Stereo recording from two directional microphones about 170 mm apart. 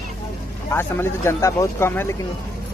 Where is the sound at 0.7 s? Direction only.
15° left (ahead or behind).